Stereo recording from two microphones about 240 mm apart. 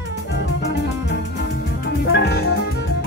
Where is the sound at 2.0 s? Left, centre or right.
Left.